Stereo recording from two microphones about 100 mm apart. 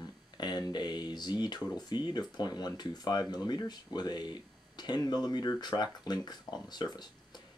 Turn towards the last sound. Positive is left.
turn(degrees=45)  # may be behind; listen again after turning